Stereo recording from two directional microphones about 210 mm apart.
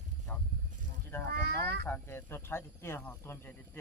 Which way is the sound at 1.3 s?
50° right (ahead or behind).